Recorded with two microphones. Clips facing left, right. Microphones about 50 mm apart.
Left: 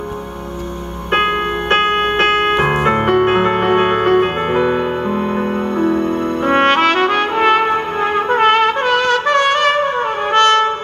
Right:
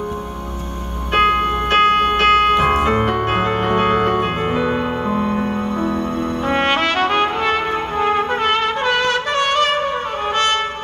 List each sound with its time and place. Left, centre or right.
1.1 s music: left
5.2 s trumpet: centre
7.3 s music: left
8.0 s trumpet: left
8.4 s trumpet: left
9.4 s trumpet: left
10.3 s brass instrument: left